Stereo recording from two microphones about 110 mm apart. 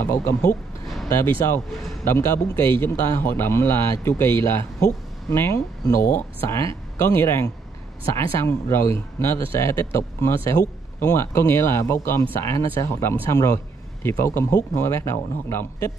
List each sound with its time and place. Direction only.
0.0 s speech: 25° left (ahead or behind)